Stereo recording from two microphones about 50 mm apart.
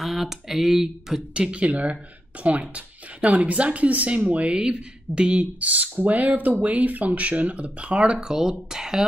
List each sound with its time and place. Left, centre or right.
0.0 s speech: centre
1.3 s speech: right